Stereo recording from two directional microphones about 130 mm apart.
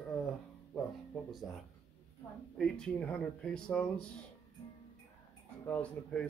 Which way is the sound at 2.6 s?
5° left (ahead or behind).